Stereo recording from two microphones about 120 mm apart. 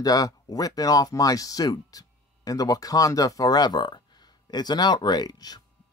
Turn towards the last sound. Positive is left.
turn(degrees=35)  # may be behind; listen again after turning